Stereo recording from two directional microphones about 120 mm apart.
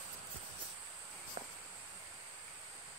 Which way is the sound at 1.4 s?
55° right (ahead or behind).